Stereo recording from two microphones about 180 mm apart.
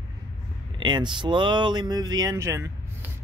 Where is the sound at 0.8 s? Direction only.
25° right (ahead or behind).